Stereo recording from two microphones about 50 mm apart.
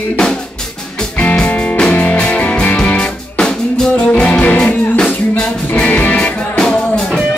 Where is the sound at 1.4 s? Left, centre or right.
Left; by 3.9 s centre.